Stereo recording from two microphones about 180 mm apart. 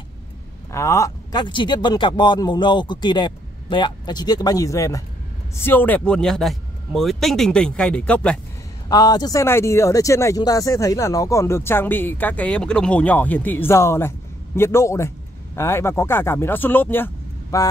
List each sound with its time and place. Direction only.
0.7 s speech: 15° left (ahead or behind)
8.8 s speech: 20° left (ahead or behind)